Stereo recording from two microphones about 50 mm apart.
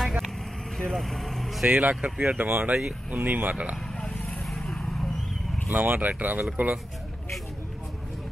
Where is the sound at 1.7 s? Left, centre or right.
Right.